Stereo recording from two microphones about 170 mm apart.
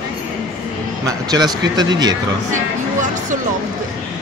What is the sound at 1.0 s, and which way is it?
Speech, 25° right (ahead or behind).